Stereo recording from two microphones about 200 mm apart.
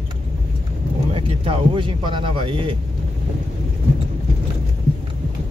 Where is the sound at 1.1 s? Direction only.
25° right (ahead or behind).